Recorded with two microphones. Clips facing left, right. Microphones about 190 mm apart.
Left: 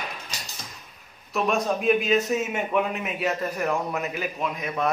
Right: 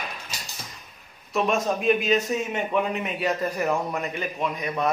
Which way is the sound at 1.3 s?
Centre (ahead or behind).